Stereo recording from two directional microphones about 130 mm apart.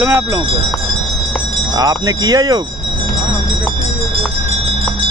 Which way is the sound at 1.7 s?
30° right (ahead or behind).